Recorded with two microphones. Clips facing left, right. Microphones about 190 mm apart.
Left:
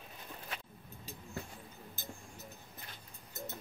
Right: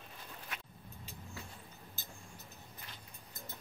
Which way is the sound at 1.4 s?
50° left (ahead or behind).